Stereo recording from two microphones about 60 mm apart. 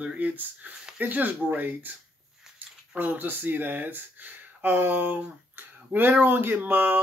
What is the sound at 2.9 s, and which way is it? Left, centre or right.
Speech, right.